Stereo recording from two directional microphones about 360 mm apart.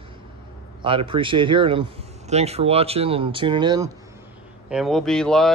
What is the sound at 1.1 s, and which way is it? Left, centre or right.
Speech, centre.